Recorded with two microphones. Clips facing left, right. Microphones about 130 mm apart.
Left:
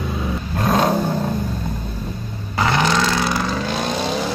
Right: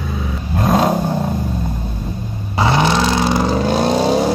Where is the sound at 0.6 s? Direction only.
15° right (ahead or behind).